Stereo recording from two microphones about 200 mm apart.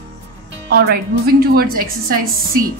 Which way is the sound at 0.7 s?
55° right (ahead or behind).